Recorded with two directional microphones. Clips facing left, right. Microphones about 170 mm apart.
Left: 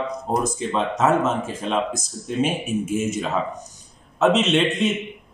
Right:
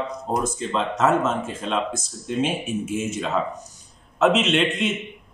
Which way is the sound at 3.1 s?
Centre (ahead or behind).